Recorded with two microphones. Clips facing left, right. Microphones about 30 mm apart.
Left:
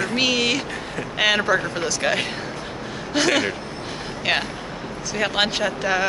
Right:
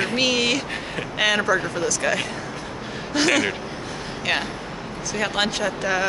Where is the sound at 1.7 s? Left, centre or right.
Left.